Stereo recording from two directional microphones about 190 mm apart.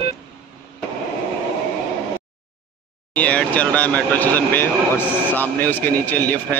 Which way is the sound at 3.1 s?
5° left (ahead or behind).